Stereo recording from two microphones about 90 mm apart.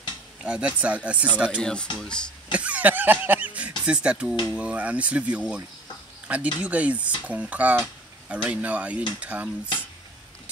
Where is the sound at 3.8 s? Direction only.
10° right (ahead or behind).